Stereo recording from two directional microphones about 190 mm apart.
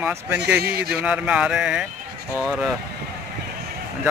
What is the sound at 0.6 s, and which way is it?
Speech, 55° right (ahead or behind).